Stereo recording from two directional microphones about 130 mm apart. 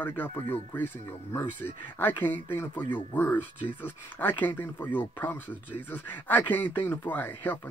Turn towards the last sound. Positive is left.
turn(degrees=15)  # may be behind; listen again after turning